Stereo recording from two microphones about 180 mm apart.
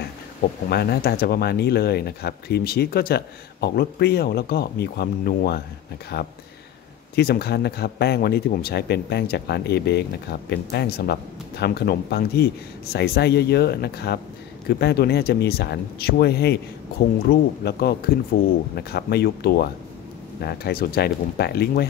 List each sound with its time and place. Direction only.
0.7 s speech: 60° left (ahead or behind)